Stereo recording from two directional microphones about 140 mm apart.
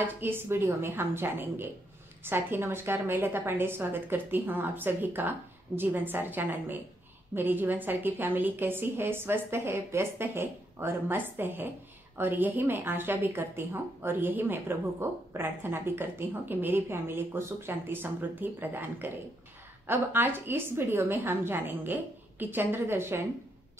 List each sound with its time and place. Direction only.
0.0 s speech: 15° right (ahead or behind)